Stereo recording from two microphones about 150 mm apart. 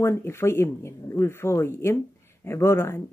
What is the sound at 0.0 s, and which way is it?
Speech, 15° left (ahead or behind).